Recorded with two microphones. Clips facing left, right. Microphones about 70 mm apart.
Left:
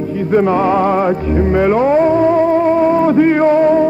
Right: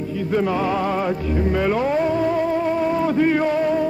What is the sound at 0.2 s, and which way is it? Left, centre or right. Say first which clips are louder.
Music: left 8 dB; left.